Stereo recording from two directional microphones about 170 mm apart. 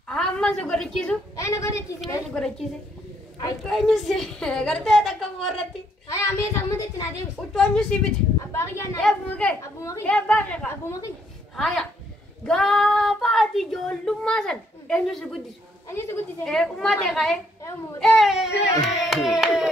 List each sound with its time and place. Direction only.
0.1 s a sound: 5° left (ahead or behind)
1.3 s a sound: 20° left (ahead or behind)
3.6 s a woman's voice: centre (ahead or behind)
6.0 s a sound: 20° left (ahead or behind)
7.3 s a woman's voice: 5° left (ahead or behind)
8.4 s a woman's voice: 15° left (ahead or behind)
9.6 s a woman's voice: 20° left (ahead or behind)
10.0 s a woman's voice: 5° left (ahead or behind)
10.9 s a woman's voice: 20° left (ahead or behind)
11.5 s a woman's voice: centre (ahead or behind)
15.9 s a woman's voice: 15° left (ahead or behind)
16.4 s a woman's voice: centre (ahead or behind)